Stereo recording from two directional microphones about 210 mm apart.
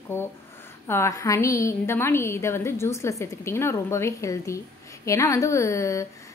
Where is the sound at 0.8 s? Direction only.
10° left (ahead or behind).